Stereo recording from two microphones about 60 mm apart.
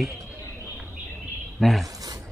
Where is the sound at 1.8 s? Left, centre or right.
Right.